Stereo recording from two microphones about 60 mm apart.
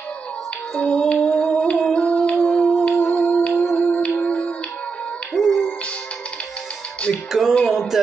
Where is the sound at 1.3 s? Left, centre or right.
Centre.